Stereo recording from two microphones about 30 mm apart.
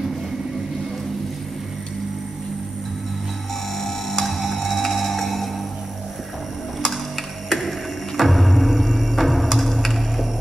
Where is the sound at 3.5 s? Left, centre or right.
Centre.